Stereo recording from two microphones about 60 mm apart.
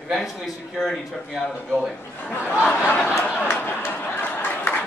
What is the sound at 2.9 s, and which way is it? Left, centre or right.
Speech, left.